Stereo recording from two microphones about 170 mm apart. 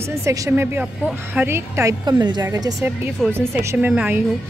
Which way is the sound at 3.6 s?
10° right (ahead or behind).